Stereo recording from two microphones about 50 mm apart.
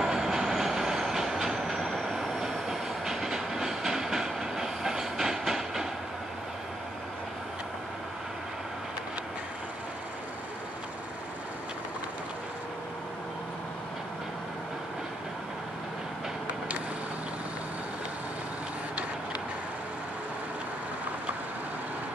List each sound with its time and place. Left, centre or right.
0.0 s train: centre
16.4 s vehicle: right